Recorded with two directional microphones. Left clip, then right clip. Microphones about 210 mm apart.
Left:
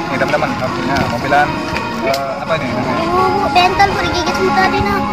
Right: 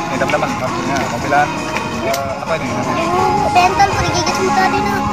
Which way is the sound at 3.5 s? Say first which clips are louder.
Left 1 dB; 10° right (ahead or behind).